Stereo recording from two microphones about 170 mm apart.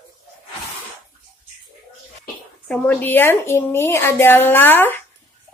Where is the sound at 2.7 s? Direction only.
5° left (ahead or behind).